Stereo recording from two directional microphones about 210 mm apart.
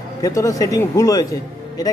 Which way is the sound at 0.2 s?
15° left (ahead or behind).